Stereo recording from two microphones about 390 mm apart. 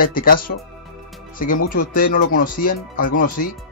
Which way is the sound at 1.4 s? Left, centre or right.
Left.